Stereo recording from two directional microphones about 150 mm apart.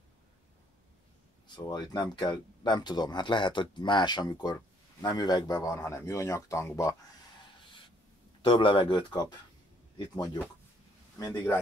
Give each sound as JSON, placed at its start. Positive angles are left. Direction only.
{"t": 1.5, "sound": "speech", "side_deg": 30}
{"t": 8.5, "sound": "speech", "side_deg": 35}